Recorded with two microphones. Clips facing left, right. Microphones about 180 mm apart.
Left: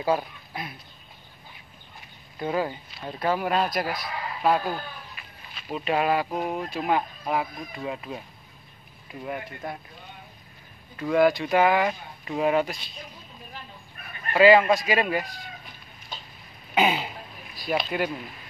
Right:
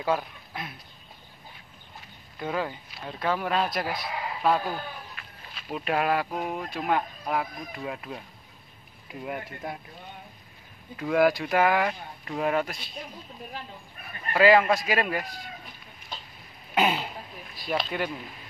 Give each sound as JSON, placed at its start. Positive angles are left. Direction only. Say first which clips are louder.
{"t": 0.0, "sound": "speech", "louder": "left 2 dB", "side_deg": 5}
{"t": 2.4, "sound": "speech", "louder": "left 3 dB", "side_deg": 5}
{"t": 9.2, "sound": "speech", "louder": "left 1 dB", "side_deg": -5}
{"t": 11.0, "sound": "speech", "louder": "left 2 dB", "side_deg": -5}
{"t": 14.3, "sound": "speech", "louder": "left 3 dB", "side_deg": 0}
{"t": 16.7, "sound": "throat clearing", "louder": "left 2 dB", "side_deg": 0}
{"t": 17.6, "sound": "speech", "louder": "left 3 dB", "side_deg": 5}